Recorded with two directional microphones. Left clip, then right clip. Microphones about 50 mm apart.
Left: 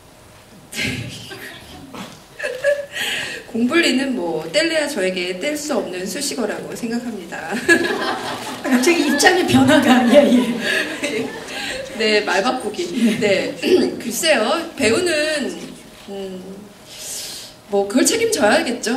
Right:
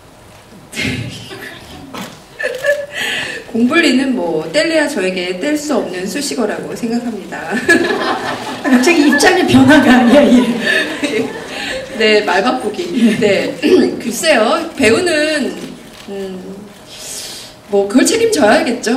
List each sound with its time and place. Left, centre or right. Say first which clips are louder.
0.7 s a sound: right 4 dB; left
2.4 s chuckle: right 4 dB; left
4.4 s speech: right 5 dB; left
10.6 s chuckle: right 6 dB; left
12.7 s speech: right 5 dB; left
17.7 s speech: right 5 dB; left